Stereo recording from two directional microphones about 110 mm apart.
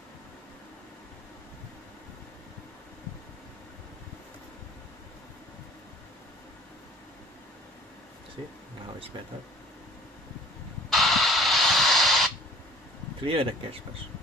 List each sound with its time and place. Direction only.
10.9 s radio: centre (ahead or behind)
13.2 s speech: 55° right (ahead or behind)